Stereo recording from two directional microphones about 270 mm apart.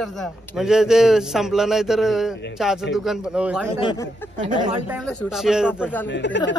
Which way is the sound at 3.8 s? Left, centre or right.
Centre.